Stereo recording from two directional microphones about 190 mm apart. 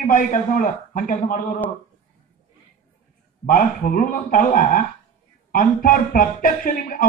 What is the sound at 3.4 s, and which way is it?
A man's voice, 45° left (ahead or behind).